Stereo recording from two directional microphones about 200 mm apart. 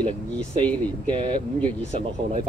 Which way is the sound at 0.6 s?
25° right (ahead or behind).